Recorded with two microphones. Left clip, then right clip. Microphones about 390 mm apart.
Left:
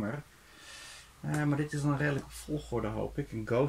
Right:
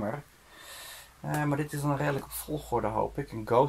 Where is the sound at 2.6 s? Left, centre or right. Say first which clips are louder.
Right 8 dB; right.